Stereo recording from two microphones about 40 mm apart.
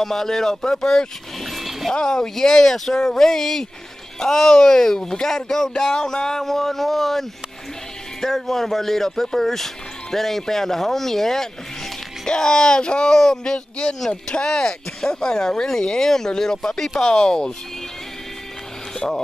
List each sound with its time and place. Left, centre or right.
0.0 s speech: centre
1.5 s a sound: centre
2.0 s speech: centre